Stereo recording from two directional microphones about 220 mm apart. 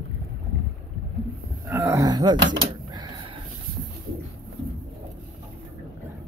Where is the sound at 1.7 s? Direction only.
10° right (ahead or behind).